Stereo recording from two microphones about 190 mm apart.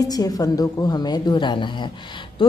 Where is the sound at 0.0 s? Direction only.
20° left (ahead or behind).